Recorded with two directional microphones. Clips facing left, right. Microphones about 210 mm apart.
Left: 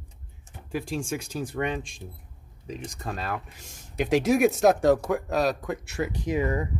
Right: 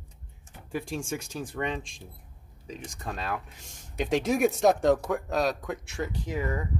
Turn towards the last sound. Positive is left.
turn(degrees=15)  # may be behind; listen again after turning